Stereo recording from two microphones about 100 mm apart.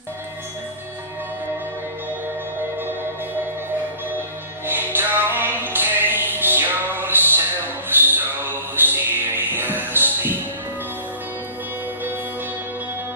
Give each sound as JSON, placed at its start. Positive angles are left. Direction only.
{"t": 4.6, "sound": "music", "side_deg": -20}